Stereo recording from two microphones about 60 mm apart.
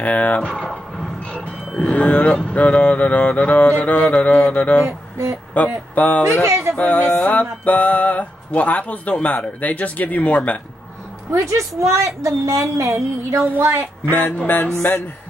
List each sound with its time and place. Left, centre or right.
0.0 s speech: left
1.8 s mantra: centre
4.8 s a sound: right
5.5 s a sound: left
6.8 s music: left
11.3 s a woman's voice: right
14.1 s mantra: left
14.8 s mantra: left